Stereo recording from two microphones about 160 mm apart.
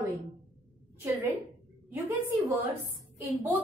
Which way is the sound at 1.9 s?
20° right (ahead or behind).